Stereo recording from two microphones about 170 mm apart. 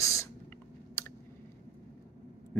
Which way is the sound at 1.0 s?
15° left (ahead or behind).